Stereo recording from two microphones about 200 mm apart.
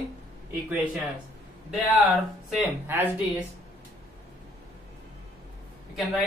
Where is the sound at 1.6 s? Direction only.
Centre (ahead or behind).